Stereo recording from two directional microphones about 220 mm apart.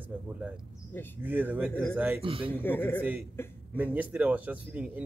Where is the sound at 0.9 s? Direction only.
10° left (ahead or behind).